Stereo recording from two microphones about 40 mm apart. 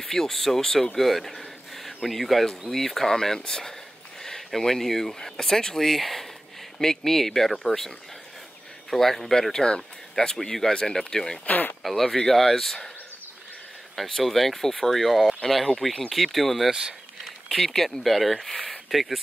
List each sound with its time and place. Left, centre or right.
0.0 s speech: centre
8.9 s speech: centre
11.4 s speech: left
11.8 s speech: centre
13.9 s speech: centre